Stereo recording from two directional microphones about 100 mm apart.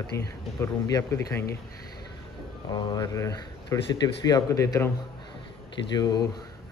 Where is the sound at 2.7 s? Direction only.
45° left (ahead or behind).